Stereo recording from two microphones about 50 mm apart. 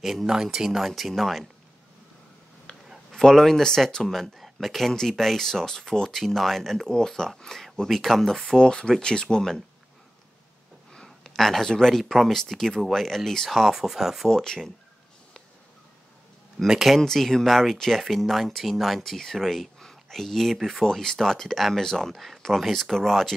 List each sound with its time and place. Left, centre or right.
0.0 s speech: centre
2.7 s a sound: left
3.1 s speech: centre
10.9 s a sound: centre
12.0 s speech: centre
13.7 s speech: centre
14.3 s speech: centre
16.6 s speech: centre
17.0 s speech: centre